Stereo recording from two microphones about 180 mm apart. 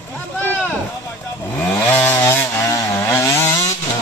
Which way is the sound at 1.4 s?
10° left (ahead or behind).